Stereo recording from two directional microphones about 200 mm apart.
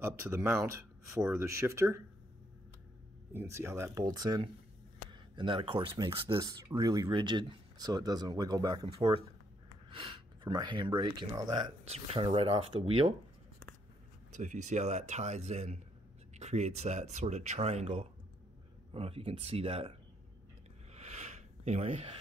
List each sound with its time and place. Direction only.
0.2 s speech: 15° right (ahead or behind)
3.3 s speech: 15° right (ahead or behind)
14.3 s speech: 35° right (ahead or behind)
20.9 s a sound: 35° right (ahead or behind)